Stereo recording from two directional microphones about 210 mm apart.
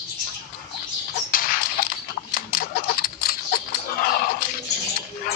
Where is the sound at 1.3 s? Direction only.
45° left (ahead or behind).